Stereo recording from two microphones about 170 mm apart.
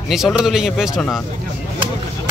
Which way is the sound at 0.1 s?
Centre (ahead or behind).